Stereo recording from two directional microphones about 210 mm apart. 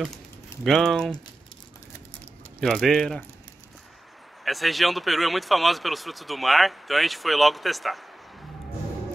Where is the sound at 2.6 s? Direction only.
Centre (ahead or behind).